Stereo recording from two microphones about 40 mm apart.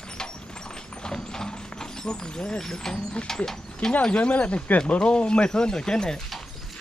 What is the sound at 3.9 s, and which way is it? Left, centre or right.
Speech, left.